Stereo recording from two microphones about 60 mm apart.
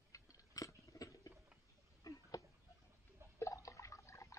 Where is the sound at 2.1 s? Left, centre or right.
Left.